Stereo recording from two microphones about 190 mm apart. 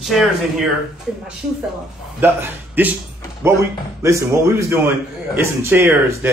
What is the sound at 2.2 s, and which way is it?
Speech, 10° right (ahead or behind).